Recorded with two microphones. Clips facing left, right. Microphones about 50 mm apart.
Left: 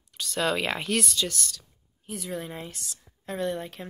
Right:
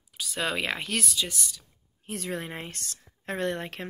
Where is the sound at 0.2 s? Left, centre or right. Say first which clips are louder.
Left 3 dB; centre.